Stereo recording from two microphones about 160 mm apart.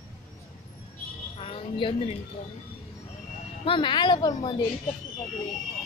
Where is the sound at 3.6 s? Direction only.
30° left (ahead or behind).